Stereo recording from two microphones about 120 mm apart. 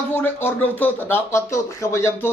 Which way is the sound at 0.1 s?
20° left (ahead or behind).